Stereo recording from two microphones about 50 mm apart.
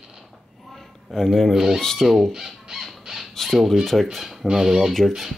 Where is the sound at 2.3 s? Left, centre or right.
Centre.